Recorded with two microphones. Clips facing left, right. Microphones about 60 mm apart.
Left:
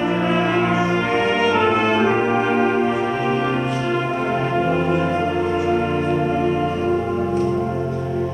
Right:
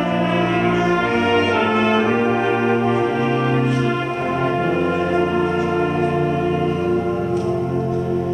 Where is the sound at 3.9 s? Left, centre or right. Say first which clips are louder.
Left 1 dB; centre.